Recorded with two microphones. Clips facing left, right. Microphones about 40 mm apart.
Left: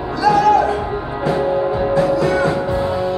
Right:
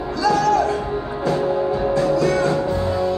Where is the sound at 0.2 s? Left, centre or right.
Centre.